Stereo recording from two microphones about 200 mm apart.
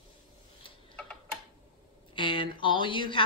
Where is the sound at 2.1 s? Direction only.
25° left (ahead or behind).